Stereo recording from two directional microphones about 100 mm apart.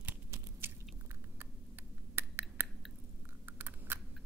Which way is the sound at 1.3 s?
20° right (ahead or behind).